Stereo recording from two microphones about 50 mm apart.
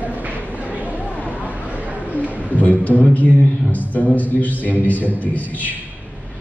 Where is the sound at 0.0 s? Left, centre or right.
Right.